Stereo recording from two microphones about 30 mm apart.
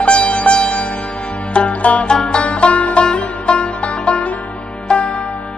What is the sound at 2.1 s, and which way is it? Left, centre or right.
Music, left.